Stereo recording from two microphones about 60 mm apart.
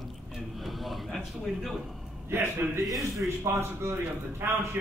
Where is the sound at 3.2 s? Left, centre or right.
Right.